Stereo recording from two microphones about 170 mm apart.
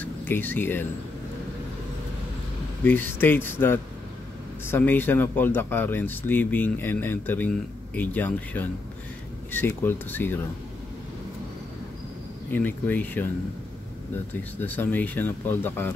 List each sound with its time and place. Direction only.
0.0 s speech: 10° left (ahead or behind)
2.8 s speech: 10° left (ahead or behind)
12.4 s speech: 10° left (ahead or behind)